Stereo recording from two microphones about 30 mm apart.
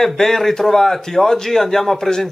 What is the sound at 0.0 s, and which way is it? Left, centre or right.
Speech, centre.